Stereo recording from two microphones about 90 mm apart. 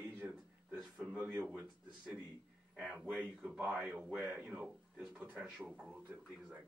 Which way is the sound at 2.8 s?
10° right (ahead or behind).